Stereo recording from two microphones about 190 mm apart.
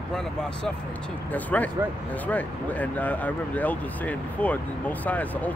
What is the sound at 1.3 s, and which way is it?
Speech, 10° left (ahead or behind).